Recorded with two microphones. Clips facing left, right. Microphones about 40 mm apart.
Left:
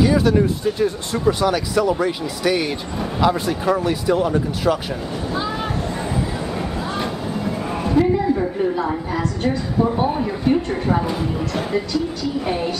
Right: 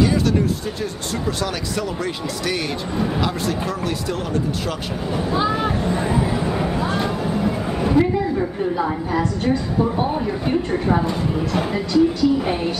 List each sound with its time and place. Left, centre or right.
0.0 s speech: centre
5.3 s vehicle: centre
7.4 s a sound: centre
10.4 s a woman's voice: centre